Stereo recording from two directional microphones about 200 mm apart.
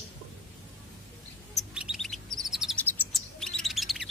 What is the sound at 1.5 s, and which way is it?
Bird, 5° right (ahead or behind).